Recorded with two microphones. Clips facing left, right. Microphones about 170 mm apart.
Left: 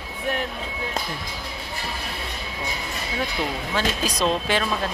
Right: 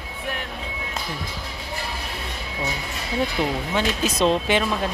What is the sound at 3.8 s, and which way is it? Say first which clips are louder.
Speech: right 2 dB; 20° right (ahead or behind).